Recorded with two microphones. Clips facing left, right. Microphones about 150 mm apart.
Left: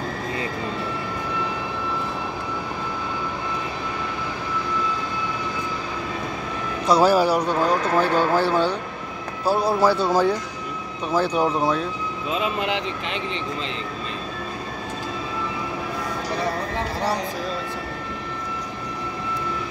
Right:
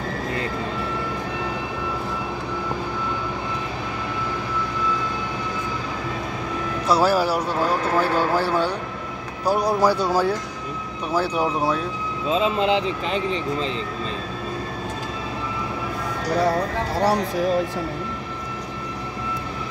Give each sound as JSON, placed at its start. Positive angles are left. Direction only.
{"t": 6.9, "sound": "a man's voice", "side_deg": -5}
{"t": 12.3, "sound": "speech", "side_deg": -30}